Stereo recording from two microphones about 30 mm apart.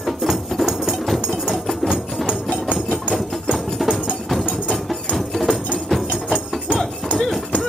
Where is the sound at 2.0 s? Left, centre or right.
Centre.